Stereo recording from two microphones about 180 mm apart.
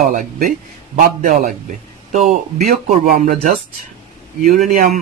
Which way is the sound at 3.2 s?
45° right (ahead or behind).